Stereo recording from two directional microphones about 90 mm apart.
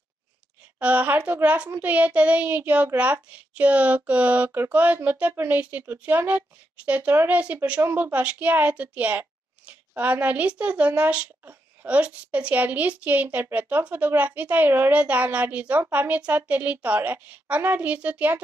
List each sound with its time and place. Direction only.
0.7 s a child's voice: 15° right (ahead or behind)